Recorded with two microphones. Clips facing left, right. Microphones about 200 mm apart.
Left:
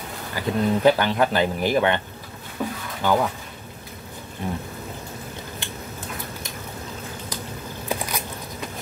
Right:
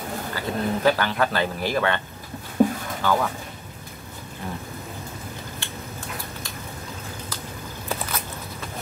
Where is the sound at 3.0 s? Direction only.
15° left (ahead or behind).